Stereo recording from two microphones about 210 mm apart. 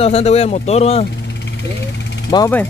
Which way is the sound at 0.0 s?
30° left (ahead or behind).